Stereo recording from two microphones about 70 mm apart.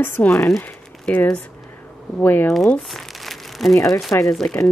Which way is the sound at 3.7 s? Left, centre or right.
Left.